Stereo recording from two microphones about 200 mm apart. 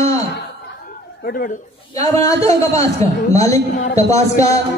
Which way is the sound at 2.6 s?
15° left (ahead or behind).